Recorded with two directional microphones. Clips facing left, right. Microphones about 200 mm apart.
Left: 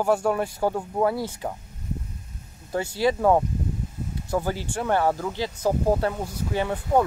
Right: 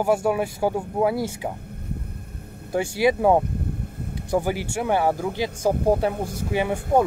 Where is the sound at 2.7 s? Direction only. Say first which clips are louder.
Right 3 dB; 15° right (ahead or behind).